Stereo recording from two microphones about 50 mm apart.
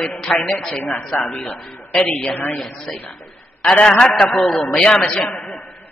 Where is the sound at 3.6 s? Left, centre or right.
Centre.